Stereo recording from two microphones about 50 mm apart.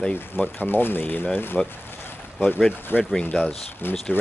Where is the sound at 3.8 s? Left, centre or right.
Left.